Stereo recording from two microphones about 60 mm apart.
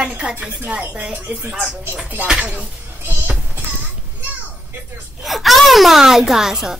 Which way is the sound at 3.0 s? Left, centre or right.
Right.